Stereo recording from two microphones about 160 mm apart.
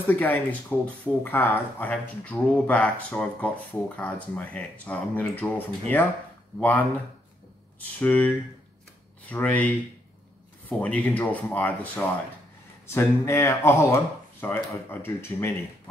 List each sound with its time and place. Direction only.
0.0 s speech: 10° left (ahead or behind)
8.0 s speech: 10° left (ahead or behind)
9.3 s speech: 10° left (ahead or behind)
10.8 s speech: 10° left (ahead or behind)